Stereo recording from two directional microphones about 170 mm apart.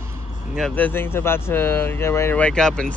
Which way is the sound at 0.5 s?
5° left (ahead or behind).